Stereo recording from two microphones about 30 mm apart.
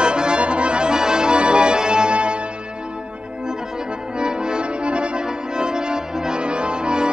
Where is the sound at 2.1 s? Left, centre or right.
Right.